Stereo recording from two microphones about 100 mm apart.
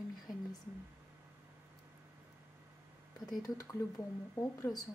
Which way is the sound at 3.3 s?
40° left (ahead or behind).